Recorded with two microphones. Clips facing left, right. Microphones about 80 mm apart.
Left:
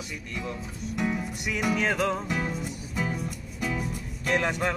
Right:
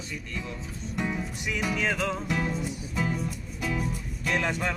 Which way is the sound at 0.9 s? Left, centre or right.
Centre.